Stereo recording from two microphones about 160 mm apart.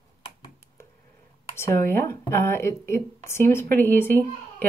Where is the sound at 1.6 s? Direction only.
15° left (ahead or behind).